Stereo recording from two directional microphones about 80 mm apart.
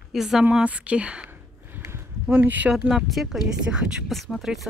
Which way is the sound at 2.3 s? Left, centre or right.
Right.